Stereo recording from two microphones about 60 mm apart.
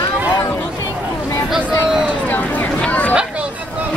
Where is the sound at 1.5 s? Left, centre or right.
Centre.